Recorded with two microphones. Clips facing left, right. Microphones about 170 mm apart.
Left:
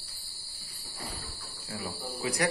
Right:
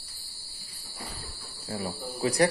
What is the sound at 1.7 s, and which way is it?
Speech, 35° right (ahead or behind).